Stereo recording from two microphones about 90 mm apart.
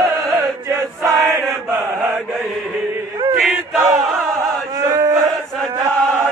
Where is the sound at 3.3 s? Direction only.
5° right (ahead or behind).